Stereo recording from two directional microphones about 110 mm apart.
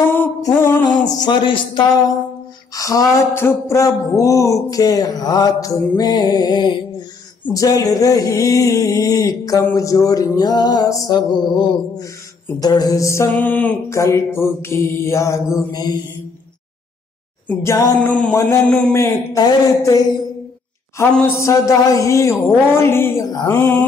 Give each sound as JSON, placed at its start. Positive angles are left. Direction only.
{"t": 0.6, "sound": "speech", "side_deg": 20}
{"t": 0.8, "sound": "speech", "side_deg": 40}
{"t": 2.7, "sound": "speech", "side_deg": 30}
{"t": 17.6, "sound": "speech", "side_deg": 25}
{"t": 19.3, "sound": "speech", "side_deg": 35}
{"t": 21.0, "sound": "speech", "side_deg": 25}
{"t": 23.2, "sound": "speech", "side_deg": 40}
{"t": 23.5, "sound": "speech", "side_deg": 20}